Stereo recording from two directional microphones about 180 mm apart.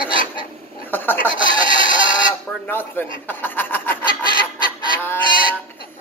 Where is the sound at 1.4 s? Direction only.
25° right (ahead or behind).